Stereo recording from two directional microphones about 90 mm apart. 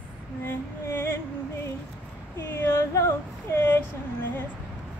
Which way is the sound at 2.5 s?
25° left (ahead or behind).